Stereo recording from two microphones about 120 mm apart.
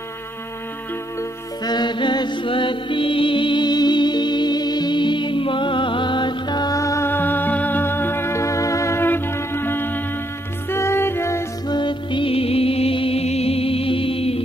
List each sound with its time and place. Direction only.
1.6 s music: 35° left (ahead or behind); by 11.4 s 20° left (ahead or behind)
11.6 s music: 40° left (ahead or behind)